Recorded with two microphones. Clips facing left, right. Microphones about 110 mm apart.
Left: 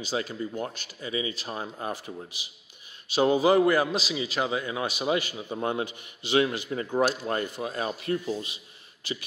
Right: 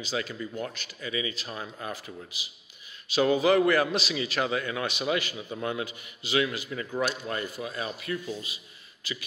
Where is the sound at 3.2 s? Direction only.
25° left (ahead or behind).